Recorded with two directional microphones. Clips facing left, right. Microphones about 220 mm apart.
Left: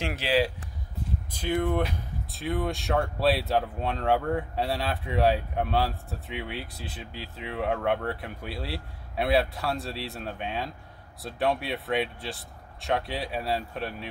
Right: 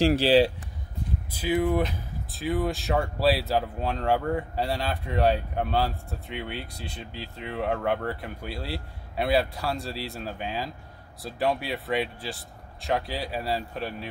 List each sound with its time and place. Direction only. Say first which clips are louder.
0.0 s speech: right 7 dB; 35° right (ahead or behind)
1.3 s speech: right 2 dB; 5° right (ahead or behind)